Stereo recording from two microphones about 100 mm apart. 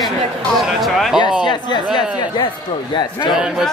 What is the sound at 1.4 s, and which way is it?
Speech, 50° left (ahead or behind).